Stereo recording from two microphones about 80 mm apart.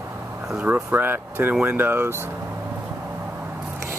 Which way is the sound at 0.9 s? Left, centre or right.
Right.